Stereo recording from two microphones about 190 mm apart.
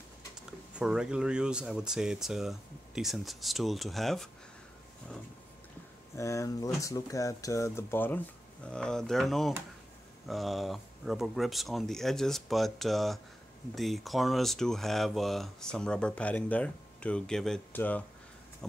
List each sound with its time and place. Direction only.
0.7 s speech: 5° right (ahead or behind)
6.1 s speech: 15° left (ahead or behind)
18.6 s a sound: 5° left (ahead or behind)